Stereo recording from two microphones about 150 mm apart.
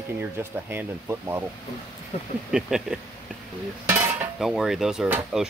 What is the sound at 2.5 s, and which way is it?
Speech, 5° right (ahead or behind).